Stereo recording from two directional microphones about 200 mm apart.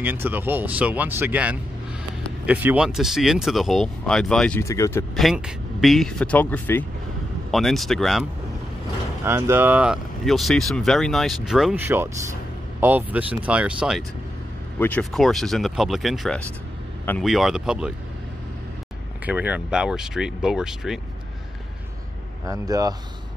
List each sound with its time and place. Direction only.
0.0 s speech: 10° right (ahead or behind); by 5.0 s 15° left (ahead or behind)
5.1 s speech: centre (ahead or behind)
9.2 s speech: 10° right (ahead or behind)
14.8 s speech: 5° left (ahead or behind)
19.2 s speech: 10° right (ahead or behind)
22.5 s speech: 20° right (ahead or behind)